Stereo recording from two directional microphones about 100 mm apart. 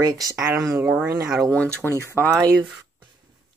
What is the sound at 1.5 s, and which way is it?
Speech, 15° left (ahead or behind).